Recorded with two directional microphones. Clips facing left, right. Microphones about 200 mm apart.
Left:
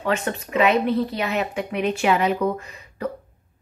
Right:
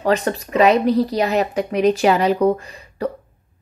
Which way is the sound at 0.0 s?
35° right (ahead or behind).